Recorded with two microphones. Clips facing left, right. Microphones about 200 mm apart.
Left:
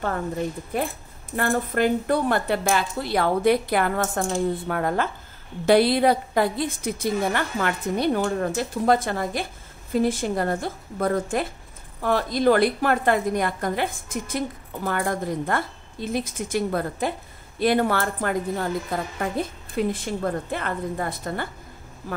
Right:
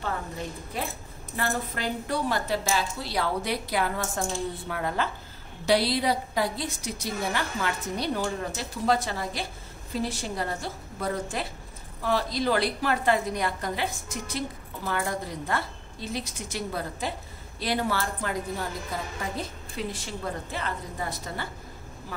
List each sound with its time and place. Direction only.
0.7 s a woman's voice: 55° left (ahead or behind)